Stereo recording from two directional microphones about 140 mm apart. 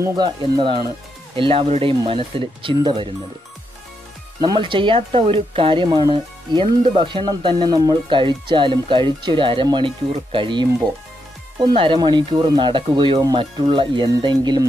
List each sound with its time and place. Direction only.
0.2 s speech: 35° right (ahead or behind)
4.4 s speech: 35° right (ahead or behind)